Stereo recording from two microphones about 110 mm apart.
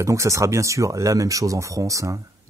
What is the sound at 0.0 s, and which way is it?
Speech, 25° right (ahead or behind).